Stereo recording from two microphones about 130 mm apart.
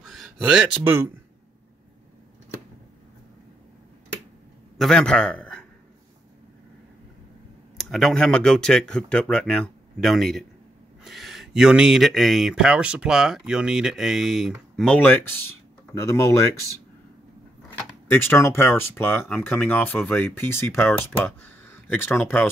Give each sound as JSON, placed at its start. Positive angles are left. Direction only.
{"t": 0.0, "sound": "a sound", "side_deg": 0}
{"t": 0.8, "sound": "speech", "side_deg": -15}
{"t": 4.7, "sound": "a man's voice", "side_deg": 5}
{"t": 7.7, "sound": "speech", "side_deg": 0}
{"t": 14.8, "sound": "speech", "side_deg": 10}
{"t": 18.1, "sound": "speech", "side_deg": 20}